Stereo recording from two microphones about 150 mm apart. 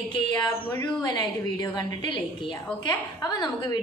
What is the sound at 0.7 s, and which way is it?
A woman's voice, 25° left (ahead or behind).